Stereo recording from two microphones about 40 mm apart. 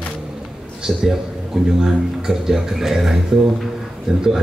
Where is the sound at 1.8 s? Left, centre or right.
Centre.